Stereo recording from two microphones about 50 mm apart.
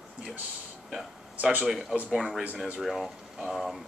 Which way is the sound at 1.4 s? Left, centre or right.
Right.